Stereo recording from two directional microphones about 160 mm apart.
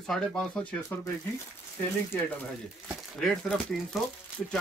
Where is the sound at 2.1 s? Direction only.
10° left (ahead or behind).